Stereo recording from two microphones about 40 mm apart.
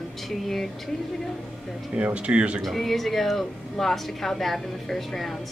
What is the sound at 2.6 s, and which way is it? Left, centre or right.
A woman's voice, centre.